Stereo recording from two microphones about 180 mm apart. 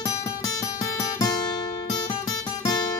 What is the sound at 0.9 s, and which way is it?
Music, 20° left (ahead or behind).